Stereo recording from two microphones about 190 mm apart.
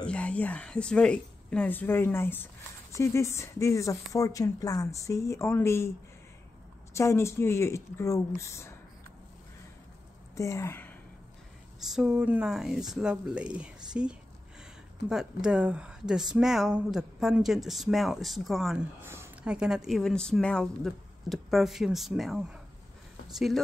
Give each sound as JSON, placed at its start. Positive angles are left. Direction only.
{"t": 0.0, "sound": "speech", "side_deg": 5}
{"t": 6.9, "sound": "speech", "side_deg": 15}
{"t": 10.3, "sound": "a woman's voice", "side_deg": 15}
{"t": 11.8, "sound": "speech", "side_deg": -5}
{"t": 19.0, "sound": "speech", "side_deg": -10}